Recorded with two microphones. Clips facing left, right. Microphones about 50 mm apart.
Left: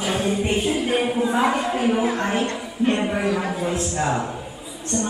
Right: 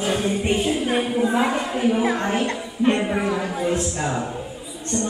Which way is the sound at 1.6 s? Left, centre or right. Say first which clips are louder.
Even; centre.